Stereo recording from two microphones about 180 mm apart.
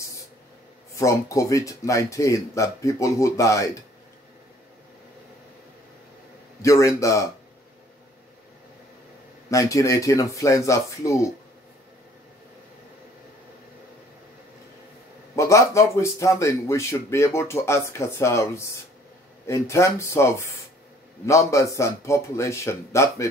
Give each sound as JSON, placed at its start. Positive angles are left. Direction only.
{"t": 0.9, "sound": "speech", "side_deg": 15}
{"t": 6.6, "sound": "speech", "side_deg": 15}
{"t": 9.5, "sound": "speech", "side_deg": 20}
{"t": 15.3, "sound": "speech", "side_deg": 15}